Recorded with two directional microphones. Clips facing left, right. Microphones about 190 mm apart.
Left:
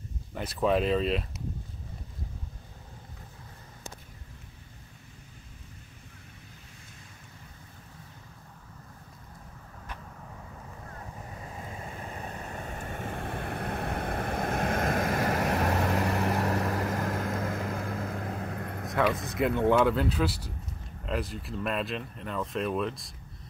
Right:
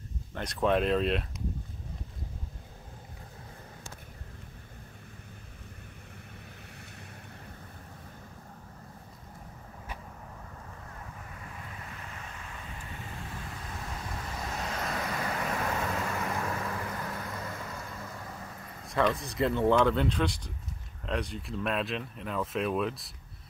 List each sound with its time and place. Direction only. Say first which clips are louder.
0.3 s speech: left 1 dB; 5° left (ahead or behind)
11.4 s waves: left 5 dB; 30° left (ahead or behind); by 15.4 s 45° left (ahead or behind)
15.9 s vehicle: left 5 dB; 65° left (ahead or behind)
16.9 s vehicle: left 7 dB; 45° left (ahead or behind)
19.4 s speech: left 1 dB; 10° left (ahead or behind)